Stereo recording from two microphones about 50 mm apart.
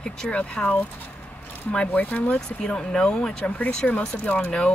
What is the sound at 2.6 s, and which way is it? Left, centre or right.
Speech, centre.